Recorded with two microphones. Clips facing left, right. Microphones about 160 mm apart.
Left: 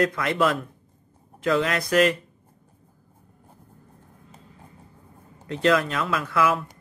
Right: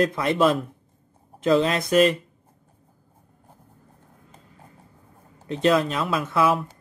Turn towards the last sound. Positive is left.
turn(degrees=-20)  # may be behind; listen again after turning